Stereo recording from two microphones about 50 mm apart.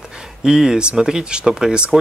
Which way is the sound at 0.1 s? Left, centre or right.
Centre.